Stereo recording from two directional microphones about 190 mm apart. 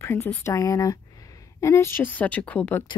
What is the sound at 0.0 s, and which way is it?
Speech, 10° left (ahead or behind).